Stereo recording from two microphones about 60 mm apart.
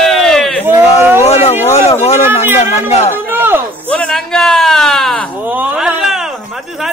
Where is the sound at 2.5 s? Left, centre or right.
Right.